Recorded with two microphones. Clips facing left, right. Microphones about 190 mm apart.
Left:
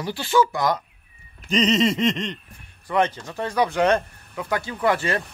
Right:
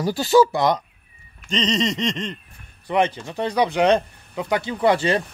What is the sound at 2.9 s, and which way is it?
Speech, 15° right (ahead or behind).